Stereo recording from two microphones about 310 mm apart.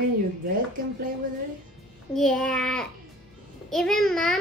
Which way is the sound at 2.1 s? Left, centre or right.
Centre.